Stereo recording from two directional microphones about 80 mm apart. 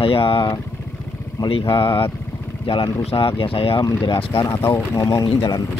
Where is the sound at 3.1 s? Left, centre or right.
Left.